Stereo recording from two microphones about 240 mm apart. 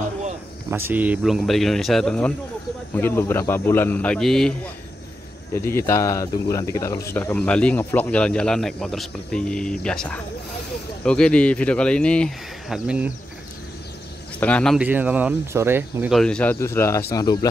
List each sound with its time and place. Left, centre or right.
0.7 s a man's voice: centre
14.4 s a man's voice: centre